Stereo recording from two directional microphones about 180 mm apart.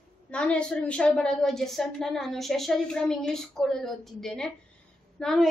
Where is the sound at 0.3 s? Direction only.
5° left (ahead or behind).